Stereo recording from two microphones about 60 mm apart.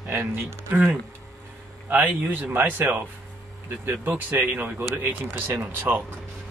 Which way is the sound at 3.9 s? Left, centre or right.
Right.